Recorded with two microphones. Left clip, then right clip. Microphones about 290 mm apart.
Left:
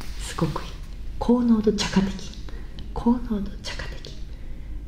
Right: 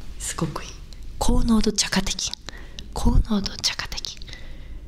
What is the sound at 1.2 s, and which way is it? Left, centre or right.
Speech, right.